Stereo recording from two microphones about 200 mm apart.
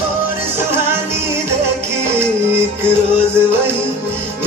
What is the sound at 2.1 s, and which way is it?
Music, 10° right (ahead or behind).